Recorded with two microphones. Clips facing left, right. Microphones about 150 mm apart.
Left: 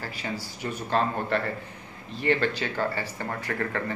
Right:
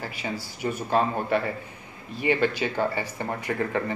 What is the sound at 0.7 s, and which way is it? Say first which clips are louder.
Speech: right 2 dB; 10° right (ahead or behind).